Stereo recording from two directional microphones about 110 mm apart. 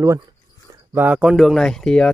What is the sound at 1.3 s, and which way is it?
Speech, centre (ahead or behind).